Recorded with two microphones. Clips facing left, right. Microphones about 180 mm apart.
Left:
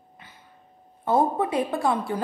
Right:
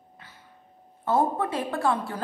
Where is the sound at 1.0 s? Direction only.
15° left (ahead or behind).